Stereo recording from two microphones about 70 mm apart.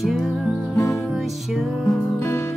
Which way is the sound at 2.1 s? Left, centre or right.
Left.